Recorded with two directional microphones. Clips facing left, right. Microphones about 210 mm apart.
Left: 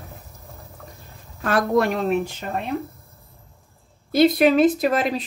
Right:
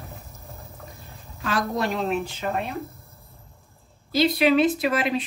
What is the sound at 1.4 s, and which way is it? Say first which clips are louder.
Speech: left 6 dB; 55° left (ahead or behind).